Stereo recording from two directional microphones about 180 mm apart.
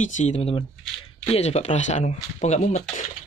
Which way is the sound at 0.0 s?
40° left (ahead or behind).